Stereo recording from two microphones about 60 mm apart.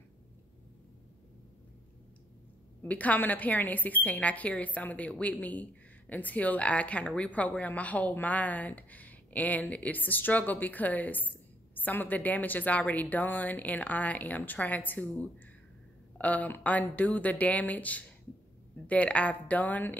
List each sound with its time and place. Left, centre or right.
2.8 s a woman's voice: left
16.2 s a woman's voice: left